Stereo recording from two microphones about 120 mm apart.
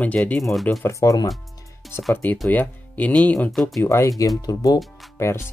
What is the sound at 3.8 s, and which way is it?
Speech, 25° left (ahead or behind).